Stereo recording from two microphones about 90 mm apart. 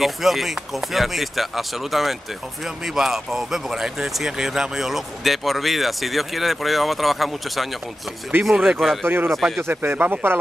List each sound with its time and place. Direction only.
0.0 s speech: centre (ahead or behind)
9.0 s speech: 25° right (ahead or behind)